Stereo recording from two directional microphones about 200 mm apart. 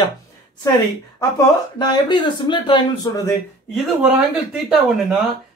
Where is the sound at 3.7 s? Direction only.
Centre (ahead or behind).